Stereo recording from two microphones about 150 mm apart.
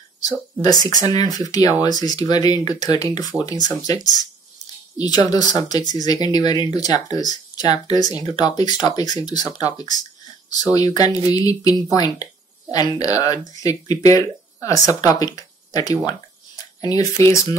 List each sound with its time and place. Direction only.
0.2 s speech: 25° left (ahead or behind)